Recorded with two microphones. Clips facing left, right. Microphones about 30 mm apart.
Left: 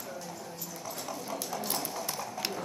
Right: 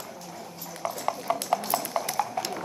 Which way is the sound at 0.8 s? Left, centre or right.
Right.